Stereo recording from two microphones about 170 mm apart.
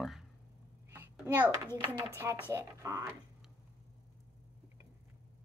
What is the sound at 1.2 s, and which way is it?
A child's voice, 10° right (ahead or behind).